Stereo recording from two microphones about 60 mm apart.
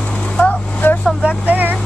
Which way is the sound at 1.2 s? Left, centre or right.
Right.